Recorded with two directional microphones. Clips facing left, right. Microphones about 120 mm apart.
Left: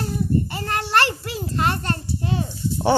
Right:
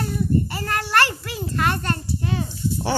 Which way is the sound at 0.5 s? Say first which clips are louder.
Left 1 dB; 25° left (ahead or behind).